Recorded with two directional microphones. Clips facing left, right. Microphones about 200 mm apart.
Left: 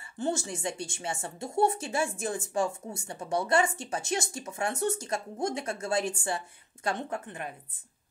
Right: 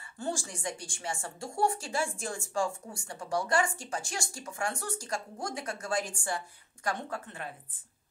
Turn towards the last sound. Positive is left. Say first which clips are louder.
# left 3 dB
turn(degrees=15)  # may be behind; listen again after turning